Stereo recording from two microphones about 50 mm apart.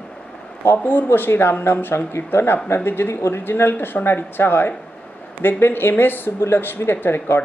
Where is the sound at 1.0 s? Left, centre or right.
Left.